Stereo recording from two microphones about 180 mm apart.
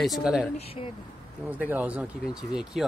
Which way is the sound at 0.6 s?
35° left (ahead or behind).